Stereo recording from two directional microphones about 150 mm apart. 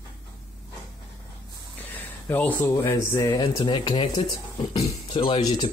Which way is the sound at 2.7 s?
20° left (ahead or behind).